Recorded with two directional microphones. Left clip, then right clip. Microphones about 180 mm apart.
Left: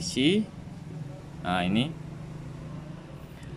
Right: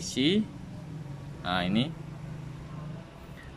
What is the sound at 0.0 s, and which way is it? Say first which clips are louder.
Vehicle: left 2 dB; 5° left (ahead or behind).